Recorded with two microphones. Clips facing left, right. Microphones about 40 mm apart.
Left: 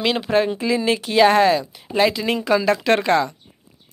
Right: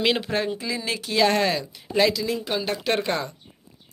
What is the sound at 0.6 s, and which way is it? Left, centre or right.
Speech, left.